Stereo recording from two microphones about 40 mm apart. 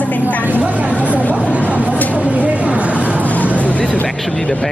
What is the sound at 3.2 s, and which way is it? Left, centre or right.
Vehicle, left.